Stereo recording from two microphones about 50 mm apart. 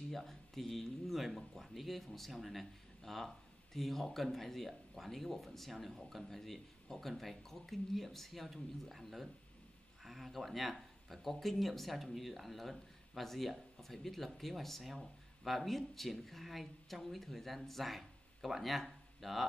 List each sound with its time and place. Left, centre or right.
0.1 s speech: centre